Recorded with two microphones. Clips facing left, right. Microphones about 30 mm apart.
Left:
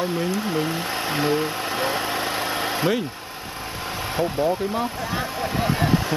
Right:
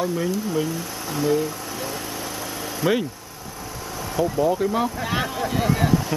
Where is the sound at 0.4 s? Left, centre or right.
Left.